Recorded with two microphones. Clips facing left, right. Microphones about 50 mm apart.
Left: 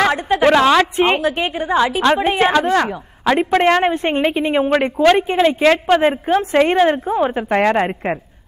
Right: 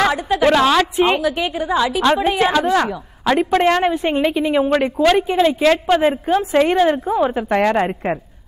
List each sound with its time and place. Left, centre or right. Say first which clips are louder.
0.1 s a sound: left 2 dB; left
1.0 s a woman's voice: left 1 dB; left
1.3 s a woman's voice: left 1 dB; left
2.6 s speech: even; centre
3.3 s a woman's voice: left 1 dB; left
3.9 s a woman's voice: even; left
7.5 s a woman's voice: left 2 dB; left